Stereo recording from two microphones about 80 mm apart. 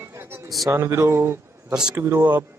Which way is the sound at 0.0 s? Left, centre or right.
Right.